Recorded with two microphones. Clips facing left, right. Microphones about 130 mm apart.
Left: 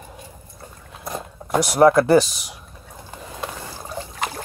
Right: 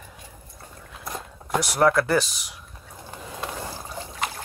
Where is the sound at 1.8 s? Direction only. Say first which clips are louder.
Left 7 dB; 20° left (ahead or behind).